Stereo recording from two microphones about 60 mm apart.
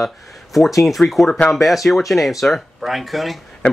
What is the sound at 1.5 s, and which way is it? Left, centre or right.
Speech, centre.